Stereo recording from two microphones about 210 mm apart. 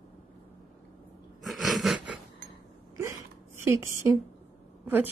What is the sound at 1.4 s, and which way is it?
Wheeze, centre (ahead or behind).